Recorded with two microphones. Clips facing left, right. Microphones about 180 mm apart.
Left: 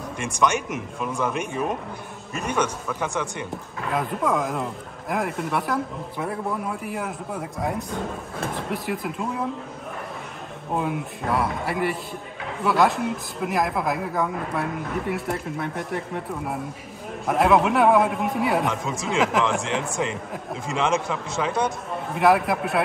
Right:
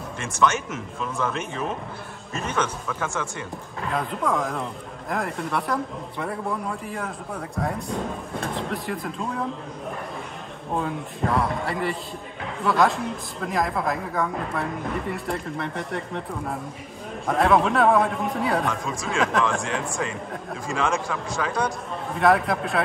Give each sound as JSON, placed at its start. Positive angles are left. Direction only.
{"t": 0.2, "sound": "speech", "side_deg": 15}
{"t": 3.9, "sound": "speech", "side_deg": 0}
{"t": 10.8, "sound": "speech", "side_deg": 5}
{"t": 17.3, "sound": "speech", "side_deg": 5}
{"t": 18.7, "sound": "a man's voice", "side_deg": 20}
{"t": 22.2, "sound": "speech", "side_deg": 5}